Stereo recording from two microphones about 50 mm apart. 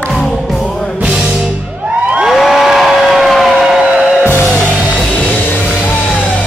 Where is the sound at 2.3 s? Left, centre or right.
Centre.